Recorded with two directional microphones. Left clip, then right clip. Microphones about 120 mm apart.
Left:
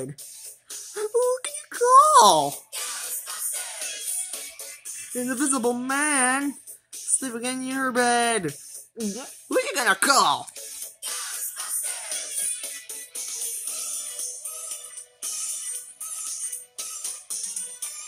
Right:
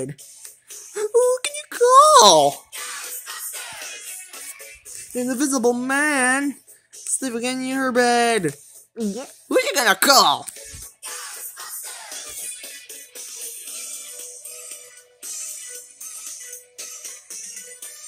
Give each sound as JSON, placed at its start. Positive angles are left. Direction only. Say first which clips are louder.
{"t": 0.9, "sound": "a sound", "louder": "right 5 dB", "side_deg": -25}
{"t": 2.7, "sound": "music", "louder": "right 1 dB", "side_deg": 70}
{"t": 5.3, "sound": "speech", "louder": "right 5 dB", "side_deg": -20}
{"t": 9.5, "sound": "speech", "louder": "right 4 dB", "side_deg": -35}
{"t": 10.8, "sound": "music", "louder": "left 2 dB", "side_deg": 50}
{"t": 13.7, "sound": "music", "louder": "left 1 dB", "side_deg": 45}